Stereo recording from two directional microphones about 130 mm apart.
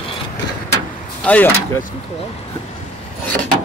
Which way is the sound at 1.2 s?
10° left (ahead or behind).